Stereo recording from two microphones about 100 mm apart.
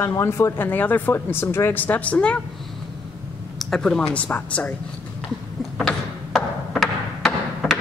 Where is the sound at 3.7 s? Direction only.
10° left (ahead or behind).